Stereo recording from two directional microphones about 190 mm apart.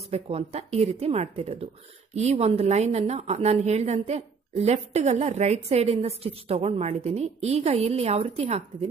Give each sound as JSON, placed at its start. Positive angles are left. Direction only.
{"t": 0.1, "sound": "a woman's voice", "side_deg": -30}